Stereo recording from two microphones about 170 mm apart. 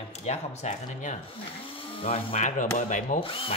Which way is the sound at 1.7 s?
35° left (ahead or behind).